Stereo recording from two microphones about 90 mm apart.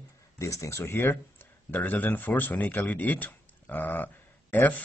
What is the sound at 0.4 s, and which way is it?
Speech, 35° left (ahead or behind).